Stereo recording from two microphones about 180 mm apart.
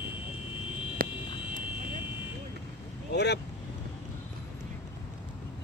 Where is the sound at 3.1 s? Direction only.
70° left (ahead or behind).